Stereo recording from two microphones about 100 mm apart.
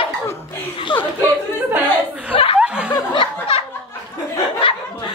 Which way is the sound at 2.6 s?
10° right (ahead or behind).